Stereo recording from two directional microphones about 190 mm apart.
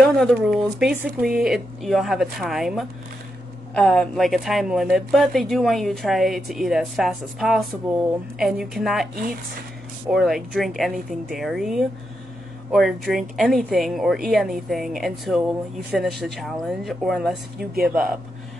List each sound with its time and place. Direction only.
0.0 s a woman's voice: centre (ahead or behind)
9.1 s speech: 50° right (ahead or behind)
10.0 s a woman's voice: centre (ahead or behind)